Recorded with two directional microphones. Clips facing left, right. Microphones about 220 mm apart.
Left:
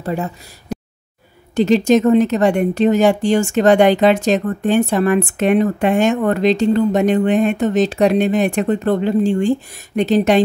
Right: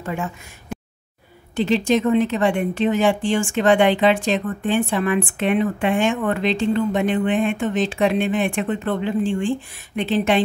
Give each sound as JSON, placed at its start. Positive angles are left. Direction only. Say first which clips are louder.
{"t": 0.0, "sound": "speech", "louder": "left 5 dB", "side_deg": 35}